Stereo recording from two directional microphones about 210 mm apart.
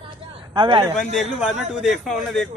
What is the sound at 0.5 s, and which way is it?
Speech, 20° right (ahead or behind).